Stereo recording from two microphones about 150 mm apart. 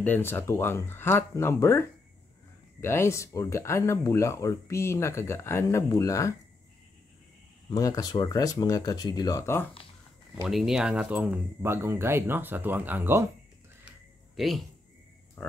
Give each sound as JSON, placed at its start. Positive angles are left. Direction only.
{"t": 0.0, "sound": "speech", "side_deg": 15}
{"t": 7.7, "sound": "speech", "side_deg": 25}
{"t": 10.5, "sound": "speech", "side_deg": 0}
{"t": 13.8, "sound": "a sound", "side_deg": 0}
{"t": 15.4, "sound": "frog", "side_deg": 5}